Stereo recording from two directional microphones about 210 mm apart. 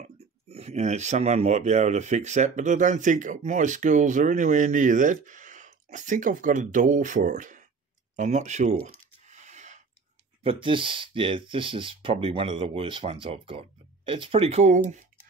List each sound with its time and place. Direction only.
0.0 s speech: 30° right (ahead or behind)
9.2 s a sound: 35° right (ahead or behind)
10.4 s speech: 25° right (ahead or behind)